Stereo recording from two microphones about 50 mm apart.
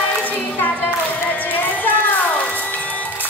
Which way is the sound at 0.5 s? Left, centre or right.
Left.